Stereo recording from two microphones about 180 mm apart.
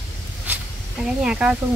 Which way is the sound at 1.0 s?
5° right (ahead or behind).